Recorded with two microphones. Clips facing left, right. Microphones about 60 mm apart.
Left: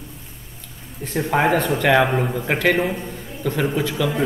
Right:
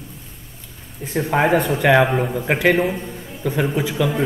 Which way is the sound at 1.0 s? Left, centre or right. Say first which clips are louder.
Right 1 dB; centre.